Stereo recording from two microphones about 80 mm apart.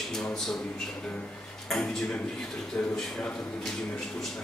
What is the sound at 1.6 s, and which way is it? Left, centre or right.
Speech, centre.